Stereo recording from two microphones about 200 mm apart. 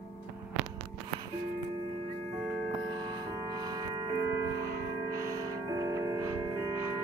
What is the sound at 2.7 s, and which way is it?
Music, 20° right (ahead or behind).